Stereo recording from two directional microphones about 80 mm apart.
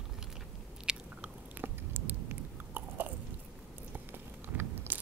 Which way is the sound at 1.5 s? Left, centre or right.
Right.